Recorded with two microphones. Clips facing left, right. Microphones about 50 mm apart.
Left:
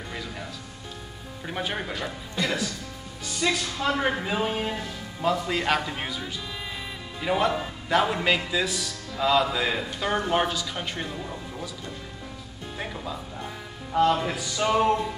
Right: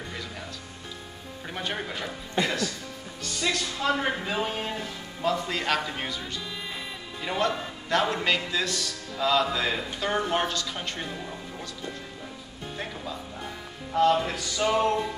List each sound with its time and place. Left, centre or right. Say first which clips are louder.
0.1 s music: left 2 dB; centre
1.5 s a man's voice: left 2 dB; centre
2.4 s speech: right 1 dB; right
3.3 s a man's voice: left 2 dB; centre
12.7 s a man's voice: left 2 dB; centre